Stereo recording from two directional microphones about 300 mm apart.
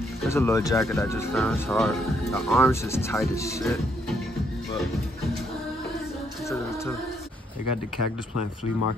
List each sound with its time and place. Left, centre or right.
0.3 s speech: centre
7.6 s speech: left